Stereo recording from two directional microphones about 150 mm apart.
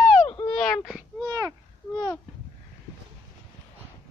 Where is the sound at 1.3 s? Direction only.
20° right (ahead or behind).